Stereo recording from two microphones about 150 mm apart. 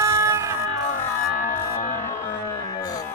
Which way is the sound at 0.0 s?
20° right (ahead or behind).